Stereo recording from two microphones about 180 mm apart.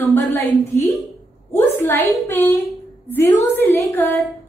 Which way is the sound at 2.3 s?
10° left (ahead or behind).